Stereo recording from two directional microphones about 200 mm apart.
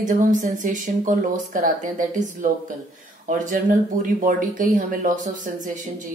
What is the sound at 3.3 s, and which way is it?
Speech, 40° right (ahead or behind).